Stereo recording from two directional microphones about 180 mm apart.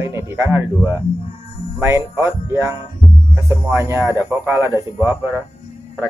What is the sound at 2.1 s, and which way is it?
A man's voice, 15° right (ahead or behind).